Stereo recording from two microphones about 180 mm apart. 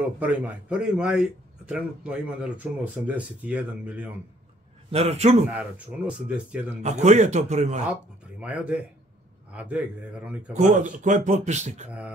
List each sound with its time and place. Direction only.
0.2 s a man's voice: 10° right (ahead or behind)
4.9 s speech: 35° right (ahead or behind)
5.5 s a man's voice: 5° right (ahead or behind)
6.8 s speech: 40° right (ahead or behind)
7.9 s a man's voice: 5° right (ahead or behind)
10.5 s a man's voice: 45° right (ahead or behind)